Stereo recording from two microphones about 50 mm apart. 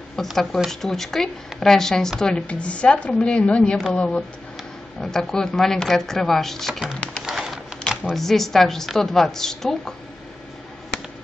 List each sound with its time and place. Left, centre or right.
0.1 s a woman's voice: centre; by 4.2 s left
5.0 s speech: centre
7.2 s a sound: centre
8.2 s speech: centre